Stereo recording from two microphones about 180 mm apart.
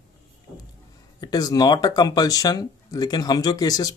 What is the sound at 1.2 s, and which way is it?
Speech, 20° left (ahead or behind).